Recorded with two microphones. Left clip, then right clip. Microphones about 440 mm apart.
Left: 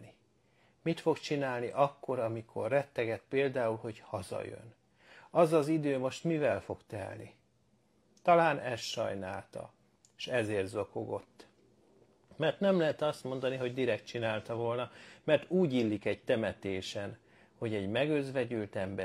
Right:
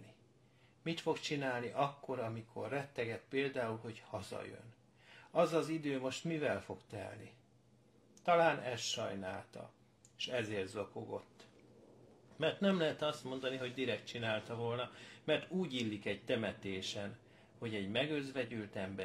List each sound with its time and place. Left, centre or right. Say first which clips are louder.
0.8 s speech: left 6 dB; left